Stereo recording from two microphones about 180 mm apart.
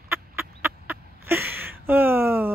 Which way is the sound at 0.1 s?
10° right (ahead or behind).